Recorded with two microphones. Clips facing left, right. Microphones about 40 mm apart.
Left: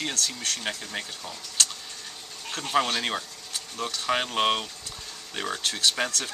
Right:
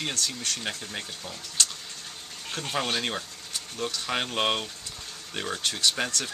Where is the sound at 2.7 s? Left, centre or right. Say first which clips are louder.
Left 4 dB; centre.